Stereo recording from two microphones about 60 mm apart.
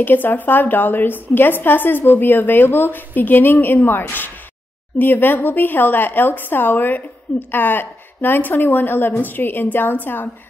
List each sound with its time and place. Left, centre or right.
0.0 s speech: left